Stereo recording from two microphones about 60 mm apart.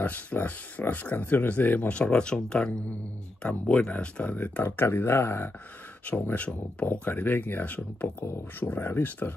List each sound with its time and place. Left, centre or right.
0.0 s speech: left
4.8 s speech: left
6.0 s speech: left